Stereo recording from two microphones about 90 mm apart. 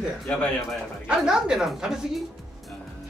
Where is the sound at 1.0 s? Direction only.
5° right (ahead or behind).